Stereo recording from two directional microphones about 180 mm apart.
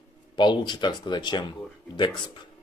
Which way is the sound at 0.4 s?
25° left (ahead or behind).